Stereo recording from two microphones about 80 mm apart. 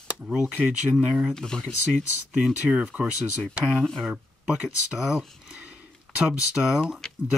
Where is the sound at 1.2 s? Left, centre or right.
Centre.